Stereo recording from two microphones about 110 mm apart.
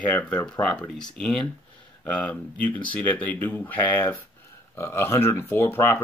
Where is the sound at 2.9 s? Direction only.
15° left (ahead or behind).